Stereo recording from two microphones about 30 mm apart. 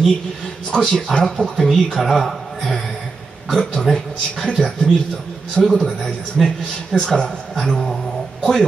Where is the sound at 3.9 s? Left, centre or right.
Centre.